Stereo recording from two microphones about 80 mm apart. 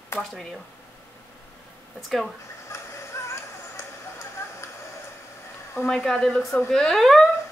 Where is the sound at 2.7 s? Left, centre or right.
Left.